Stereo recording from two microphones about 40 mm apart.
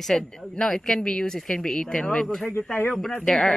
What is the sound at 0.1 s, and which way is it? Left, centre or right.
A woman's voice, centre.